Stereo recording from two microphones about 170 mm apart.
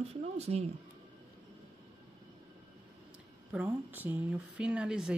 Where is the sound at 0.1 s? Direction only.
40° right (ahead or behind).